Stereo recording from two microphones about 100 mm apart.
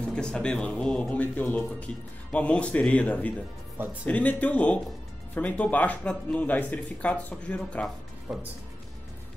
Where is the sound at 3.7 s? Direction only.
20° right (ahead or behind).